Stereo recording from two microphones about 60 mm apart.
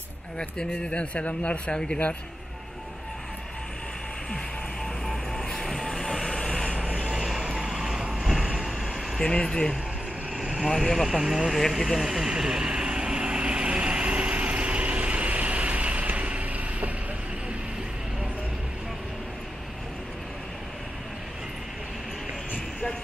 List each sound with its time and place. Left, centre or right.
0.4 s speech: centre
5.0 s vehicle: centre
6.7 s vehicle: centre
9.2 s speech: centre
10.8 s speech: centre
11.5 s vehicle: centre; by 16.9 s right
22.5 s vehicle: left